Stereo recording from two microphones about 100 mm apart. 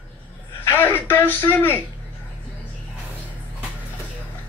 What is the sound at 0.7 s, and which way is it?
A man's voice, 20° left (ahead or behind).